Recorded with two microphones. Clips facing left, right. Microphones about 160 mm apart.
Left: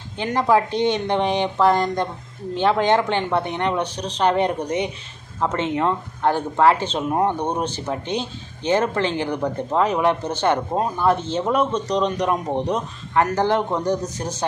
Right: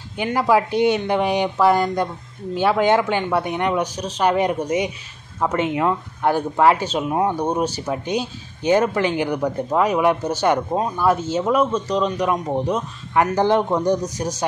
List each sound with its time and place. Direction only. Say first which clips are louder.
0.2 s speech: right 1 dB; 10° right (ahead or behind)
13.1 s speech: right 2 dB; 15° right (ahead or behind)